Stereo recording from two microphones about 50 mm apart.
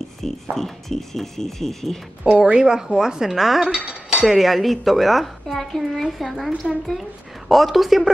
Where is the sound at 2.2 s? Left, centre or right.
Centre.